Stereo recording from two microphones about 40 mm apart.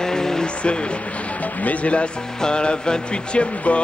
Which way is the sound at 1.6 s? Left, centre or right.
Left.